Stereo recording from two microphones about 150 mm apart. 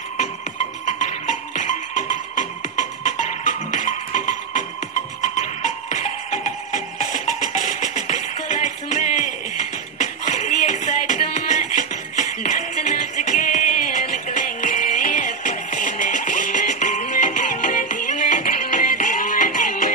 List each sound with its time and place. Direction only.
1.0 s music: 55° left (ahead or behind)
5.9 s music: 55° left (ahead or behind)